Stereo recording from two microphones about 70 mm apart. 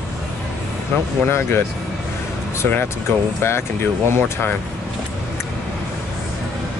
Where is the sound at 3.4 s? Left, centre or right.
Left.